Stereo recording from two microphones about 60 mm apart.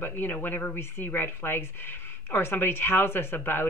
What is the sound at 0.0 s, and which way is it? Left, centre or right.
Speech, left.